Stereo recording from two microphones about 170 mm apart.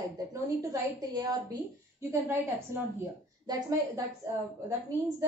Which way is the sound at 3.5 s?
25° right (ahead or behind).